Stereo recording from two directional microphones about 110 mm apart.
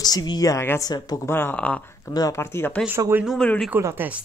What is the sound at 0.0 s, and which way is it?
A woman's voice, 40° left (ahead or behind).